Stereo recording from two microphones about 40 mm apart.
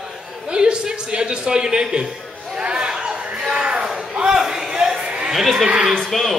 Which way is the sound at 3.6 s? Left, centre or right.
Right.